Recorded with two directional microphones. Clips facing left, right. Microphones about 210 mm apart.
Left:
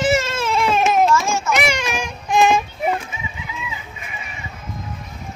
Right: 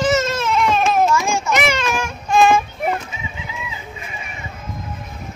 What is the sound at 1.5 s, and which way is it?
Cat, 15° left (ahead or behind).